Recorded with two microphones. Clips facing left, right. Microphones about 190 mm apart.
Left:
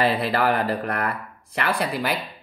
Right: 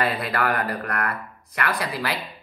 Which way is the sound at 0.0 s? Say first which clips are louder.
Left 3 dB; 25° left (ahead or behind).